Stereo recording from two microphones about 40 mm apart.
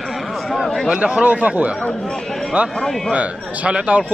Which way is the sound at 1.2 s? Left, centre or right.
Right.